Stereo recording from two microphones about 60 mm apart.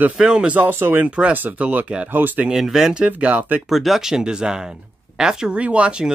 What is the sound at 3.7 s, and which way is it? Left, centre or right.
Speech, centre.